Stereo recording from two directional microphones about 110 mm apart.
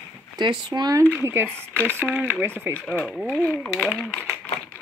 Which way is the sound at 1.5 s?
10° left (ahead or behind).